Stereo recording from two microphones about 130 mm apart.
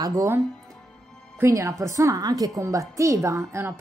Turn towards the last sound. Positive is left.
turn(degrees=-20)  # may be behind; listen again after turning